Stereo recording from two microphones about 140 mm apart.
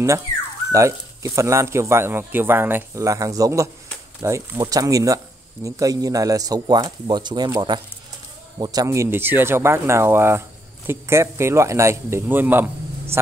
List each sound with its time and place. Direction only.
0.7 s speech: 20° right (ahead or behind)